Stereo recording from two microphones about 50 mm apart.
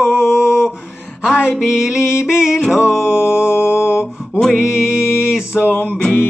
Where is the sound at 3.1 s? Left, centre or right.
Centre.